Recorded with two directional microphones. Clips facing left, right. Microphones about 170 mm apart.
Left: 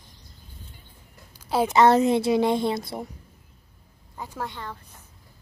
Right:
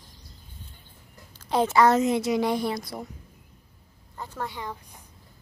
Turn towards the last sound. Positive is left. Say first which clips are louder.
# right 2 dB
turn(degrees=-15)  # may be behind; listen again after turning